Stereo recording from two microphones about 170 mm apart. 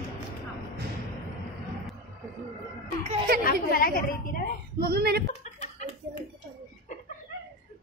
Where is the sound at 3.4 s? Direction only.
60° left (ahead or behind).